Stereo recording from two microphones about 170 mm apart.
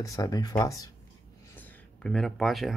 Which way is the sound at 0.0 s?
20° left (ahead or behind).